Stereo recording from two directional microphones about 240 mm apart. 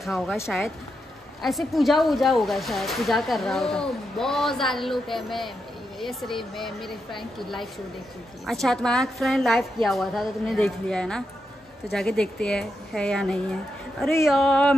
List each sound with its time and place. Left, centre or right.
0.0 s speech: centre
1.4 s speech: centre